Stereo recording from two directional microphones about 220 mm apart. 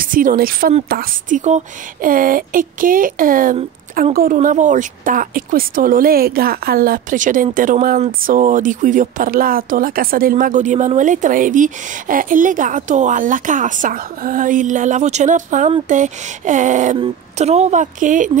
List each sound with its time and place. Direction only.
0.0 s a woman's voice: 40° right (ahead or behind)